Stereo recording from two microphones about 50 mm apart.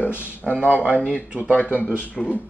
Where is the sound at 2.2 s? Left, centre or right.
Centre.